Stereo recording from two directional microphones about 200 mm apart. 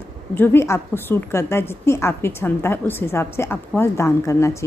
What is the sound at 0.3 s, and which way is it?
A woman's voice, 10° left (ahead or behind).